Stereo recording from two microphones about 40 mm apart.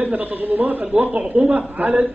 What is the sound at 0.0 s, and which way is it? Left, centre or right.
A man's voice, right.